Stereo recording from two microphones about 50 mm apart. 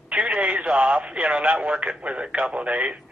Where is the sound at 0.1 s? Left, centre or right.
Right.